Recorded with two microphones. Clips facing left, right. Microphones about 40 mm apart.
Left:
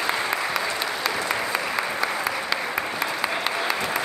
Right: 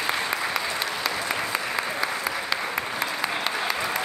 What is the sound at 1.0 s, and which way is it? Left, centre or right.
Applause, centre.